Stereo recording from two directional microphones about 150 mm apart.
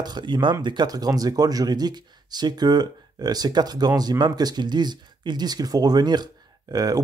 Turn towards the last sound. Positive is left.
turn(degrees=-25)  # may be behind; listen again after turning